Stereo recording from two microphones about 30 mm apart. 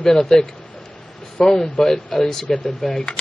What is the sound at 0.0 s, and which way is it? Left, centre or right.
Speech, centre.